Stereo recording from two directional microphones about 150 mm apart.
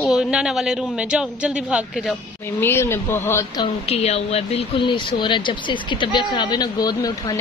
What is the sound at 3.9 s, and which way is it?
Speech, 45° left (ahead or behind).